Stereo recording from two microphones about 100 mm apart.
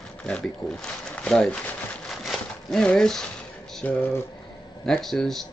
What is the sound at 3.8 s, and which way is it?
Speech, 20° left (ahead or behind).